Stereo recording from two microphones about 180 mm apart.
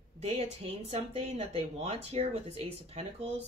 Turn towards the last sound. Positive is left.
turn(degrees=-35)  # may be behind; listen again after turning